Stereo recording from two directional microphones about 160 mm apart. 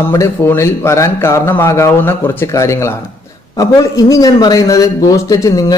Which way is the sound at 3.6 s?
20° left (ahead or behind).